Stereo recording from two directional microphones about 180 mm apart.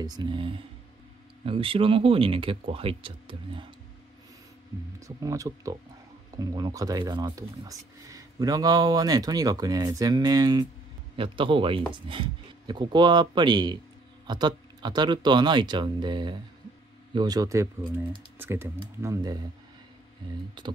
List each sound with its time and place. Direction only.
0.0 s speech: 20° right (ahead or behind)
5.0 s speech: 20° right (ahead or behind)
20.6 s speech: 25° right (ahead or behind)